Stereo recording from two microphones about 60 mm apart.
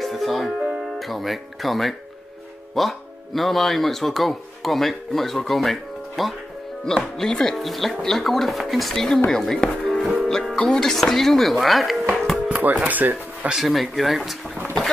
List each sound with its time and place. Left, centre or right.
0.0 s music: centre
0.9 s speech: centre
10.2 s music: centre
10.6 s speech: centre
12.4 s speech: right
13.6 s speech: centre